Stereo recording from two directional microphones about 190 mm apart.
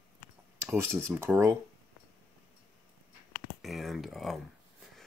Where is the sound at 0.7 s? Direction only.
10° right (ahead or behind).